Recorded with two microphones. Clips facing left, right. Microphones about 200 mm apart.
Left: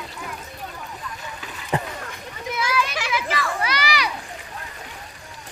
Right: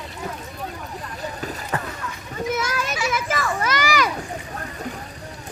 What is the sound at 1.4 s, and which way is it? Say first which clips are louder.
Vehicle: right 8 dB; 40° right (ahead or behind).